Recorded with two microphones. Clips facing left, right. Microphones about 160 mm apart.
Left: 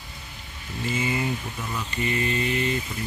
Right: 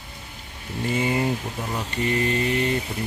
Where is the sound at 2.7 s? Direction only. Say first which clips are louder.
Right 3 dB; 60° right (ahead or behind).